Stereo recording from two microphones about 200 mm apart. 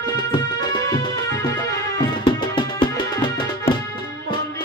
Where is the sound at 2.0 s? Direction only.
25° left (ahead or behind).